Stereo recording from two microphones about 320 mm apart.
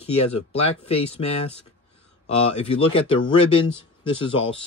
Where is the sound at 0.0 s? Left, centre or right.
Centre.